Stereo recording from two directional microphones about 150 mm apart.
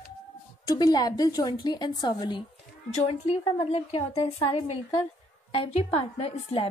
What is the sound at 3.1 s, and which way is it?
A woman's voice, 45° left (ahead or behind).